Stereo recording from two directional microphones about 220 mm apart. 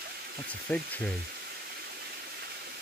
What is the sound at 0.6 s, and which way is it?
Speech, 5° left (ahead or behind).